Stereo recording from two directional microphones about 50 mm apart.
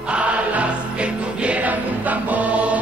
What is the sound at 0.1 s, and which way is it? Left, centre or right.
Music, right.